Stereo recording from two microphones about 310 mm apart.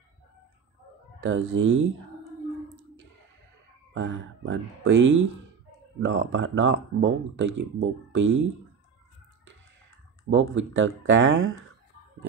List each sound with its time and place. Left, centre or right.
1.2 s speech: right
3.9 s speech: right
10.3 s speech: right